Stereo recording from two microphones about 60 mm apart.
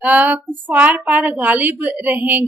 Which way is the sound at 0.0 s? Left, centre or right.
Right.